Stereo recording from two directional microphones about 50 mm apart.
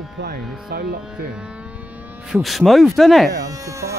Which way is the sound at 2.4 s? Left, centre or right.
Centre.